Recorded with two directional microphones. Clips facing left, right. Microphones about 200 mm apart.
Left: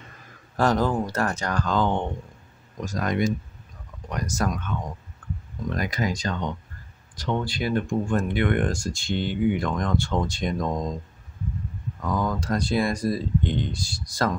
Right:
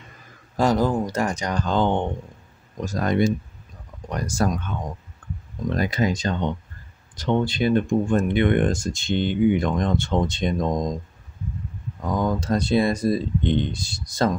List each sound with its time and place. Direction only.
0.6 s speech: 10° right (ahead or behind); by 4.7 s 30° right (ahead or behind)
5.2 s clicking: 25° right (ahead or behind)
5.7 s speech: 30° right (ahead or behind)
12.2 s speech: 25° right (ahead or behind)